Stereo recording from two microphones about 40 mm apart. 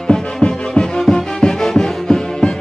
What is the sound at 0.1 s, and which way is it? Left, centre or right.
Music, left.